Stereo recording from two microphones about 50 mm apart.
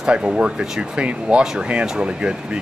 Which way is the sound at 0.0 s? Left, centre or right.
Centre.